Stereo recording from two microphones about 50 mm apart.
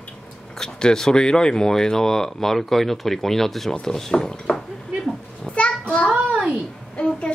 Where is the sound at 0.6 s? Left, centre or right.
Centre.